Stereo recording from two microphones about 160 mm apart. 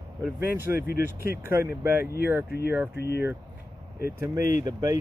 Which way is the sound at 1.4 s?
15° right (ahead or behind).